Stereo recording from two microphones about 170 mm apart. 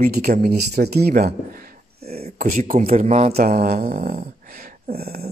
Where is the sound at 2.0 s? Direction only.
40° right (ahead or behind).